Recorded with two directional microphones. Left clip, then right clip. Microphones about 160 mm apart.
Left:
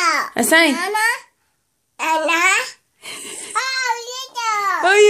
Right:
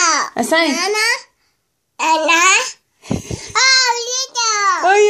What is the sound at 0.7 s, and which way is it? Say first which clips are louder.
Speech: right 2 dB; 20° right (ahead or behind).